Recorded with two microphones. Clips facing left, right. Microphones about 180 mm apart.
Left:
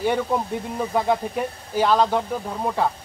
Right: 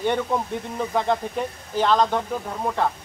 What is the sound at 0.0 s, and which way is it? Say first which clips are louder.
Speech: left 1 dB; 5° left (ahead or behind).